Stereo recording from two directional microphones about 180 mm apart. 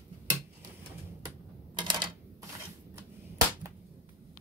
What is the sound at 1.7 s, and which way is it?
Typewriter, 25° right (ahead or behind).